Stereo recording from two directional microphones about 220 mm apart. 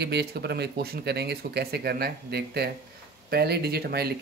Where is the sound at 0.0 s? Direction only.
50° right (ahead or behind).